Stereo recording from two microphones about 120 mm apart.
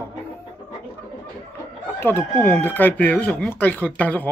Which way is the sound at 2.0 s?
20° left (ahead or behind).